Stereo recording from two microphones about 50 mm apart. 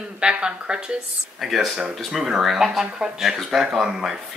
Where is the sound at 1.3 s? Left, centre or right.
Centre.